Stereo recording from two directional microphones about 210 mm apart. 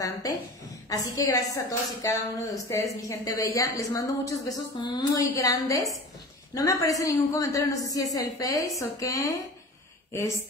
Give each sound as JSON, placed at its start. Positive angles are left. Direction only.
{"t": 0.2, "sound": "a woman's voice", "side_deg": 15}